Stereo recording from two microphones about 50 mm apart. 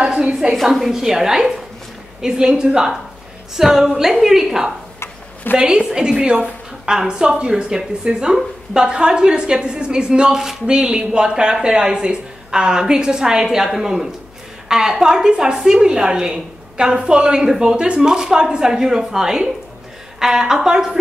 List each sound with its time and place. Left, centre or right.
0.2 s a woman's voice: centre
5.5 s a woman's voice: left
5.9 s a woman's voice: centre